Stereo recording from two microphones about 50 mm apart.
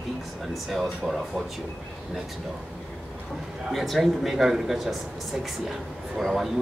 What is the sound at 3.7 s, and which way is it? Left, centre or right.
A man's voice, centre.